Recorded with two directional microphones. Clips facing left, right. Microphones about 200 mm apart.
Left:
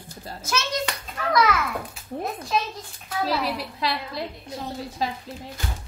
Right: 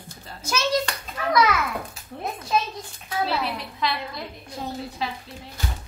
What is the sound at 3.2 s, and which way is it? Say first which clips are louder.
A woman's voice: left 1 dB; 35° left (ahead or behind).